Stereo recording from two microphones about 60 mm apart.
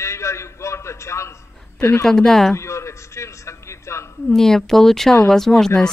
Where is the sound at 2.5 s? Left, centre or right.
Left.